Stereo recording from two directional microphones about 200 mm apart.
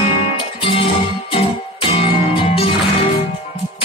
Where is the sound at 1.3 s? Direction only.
25° left (ahead or behind).